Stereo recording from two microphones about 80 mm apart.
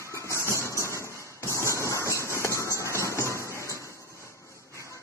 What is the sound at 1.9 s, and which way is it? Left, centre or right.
Train, right.